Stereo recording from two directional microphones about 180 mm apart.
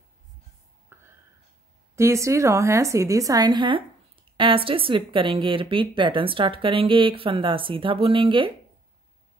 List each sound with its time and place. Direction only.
0.9 s whispering: 15° right (ahead or behind)
2.0 s a woman's voice: 15° right (ahead or behind)